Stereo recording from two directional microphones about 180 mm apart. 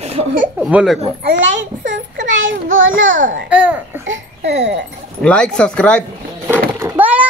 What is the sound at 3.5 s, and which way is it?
Speech, 10° right (ahead or behind).